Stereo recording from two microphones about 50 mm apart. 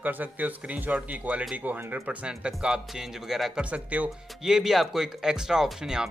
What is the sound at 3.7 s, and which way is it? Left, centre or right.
Speech, right.